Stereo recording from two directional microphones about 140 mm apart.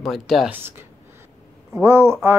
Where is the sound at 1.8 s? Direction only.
20° right (ahead or behind).